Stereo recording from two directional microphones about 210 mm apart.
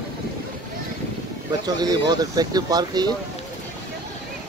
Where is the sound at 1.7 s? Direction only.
20° right (ahead or behind).